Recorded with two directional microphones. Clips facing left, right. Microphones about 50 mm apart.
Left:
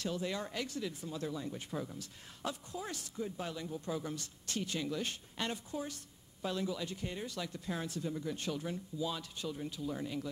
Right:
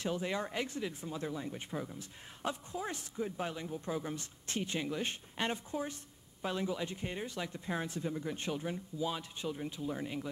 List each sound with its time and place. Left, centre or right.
0.0 s speech: right